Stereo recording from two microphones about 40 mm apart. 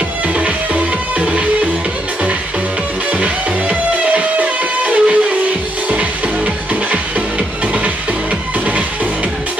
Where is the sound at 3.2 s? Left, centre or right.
Right.